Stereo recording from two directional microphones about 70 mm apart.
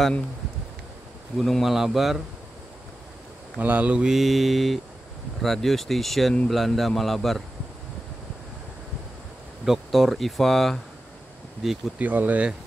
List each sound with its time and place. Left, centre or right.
1.4 s speech: centre
3.5 s speech: right
4.0 s speech: centre
9.7 s speech: centre
12.0 s speech: right